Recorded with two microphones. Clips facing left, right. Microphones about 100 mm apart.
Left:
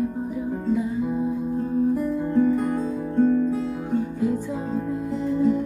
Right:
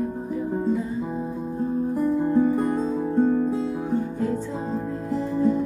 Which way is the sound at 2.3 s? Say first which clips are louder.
Even; 25° right (ahead or behind).